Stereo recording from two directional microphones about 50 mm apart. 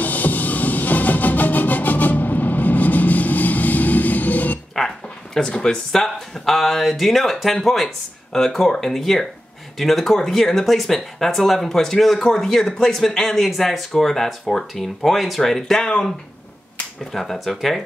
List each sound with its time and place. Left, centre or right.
0.0 s music: left
4.7 s a sound: centre
5.5 s speech: centre
15.8 s speech: centre
17.1 s speech: centre